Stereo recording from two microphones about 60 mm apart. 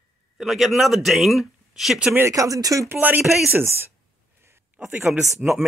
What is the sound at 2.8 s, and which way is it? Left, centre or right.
Speech, right.